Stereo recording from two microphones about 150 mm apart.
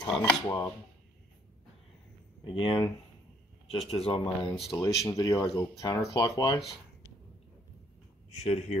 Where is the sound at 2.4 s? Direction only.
35° left (ahead or behind).